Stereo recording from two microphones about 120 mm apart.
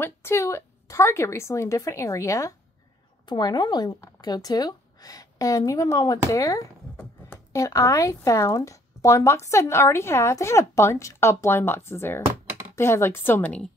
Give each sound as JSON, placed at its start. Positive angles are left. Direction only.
{"t": 0.0, "sound": "speech", "side_deg": 20}
{"t": 3.3, "sound": "speech", "side_deg": 35}